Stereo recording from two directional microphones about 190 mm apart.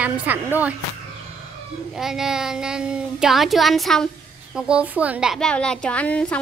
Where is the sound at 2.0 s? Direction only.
Centre (ahead or behind).